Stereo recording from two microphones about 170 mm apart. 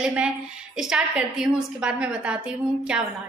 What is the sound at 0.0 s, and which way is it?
A woman's voice, 5° right (ahead or behind).